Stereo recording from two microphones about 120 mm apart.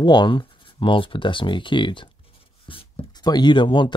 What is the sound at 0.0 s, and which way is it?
Speech, 40° left (ahead or behind).